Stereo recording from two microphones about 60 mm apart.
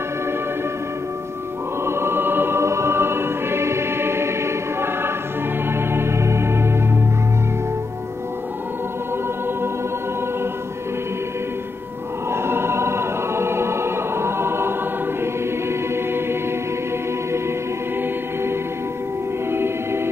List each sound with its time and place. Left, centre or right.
1.9 s choir: right
5.7 s music: right
12.3 s choir: right
15.7 s music: right
19.5 s music: right